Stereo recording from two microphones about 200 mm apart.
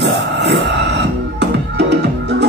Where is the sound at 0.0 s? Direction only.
60° right (ahead or behind).